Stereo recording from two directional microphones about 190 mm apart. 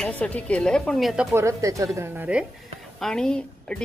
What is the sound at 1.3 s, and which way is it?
Speech, 15° right (ahead or behind).